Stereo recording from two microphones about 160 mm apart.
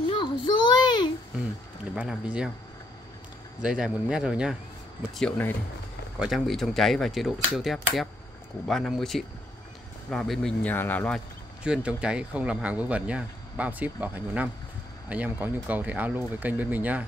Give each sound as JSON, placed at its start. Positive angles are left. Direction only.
{"t": 0.0, "sound": "child singing", "side_deg": 30}
{"t": 2.0, "sound": "speech", "side_deg": -5}
{"t": 3.6, "sound": "speech", "side_deg": -5}
{"t": 6.1, "sound": "speech", "side_deg": 0}
{"t": 11.6, "sound": "speech", "side_deg": -5}